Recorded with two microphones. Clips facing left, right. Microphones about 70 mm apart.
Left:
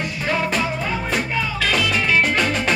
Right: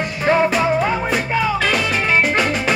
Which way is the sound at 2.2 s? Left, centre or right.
Centre.